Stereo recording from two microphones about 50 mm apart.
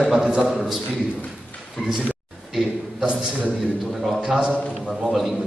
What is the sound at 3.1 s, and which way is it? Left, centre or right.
Speech, right.